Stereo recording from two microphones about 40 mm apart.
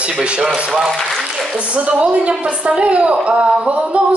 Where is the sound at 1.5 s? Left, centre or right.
Right.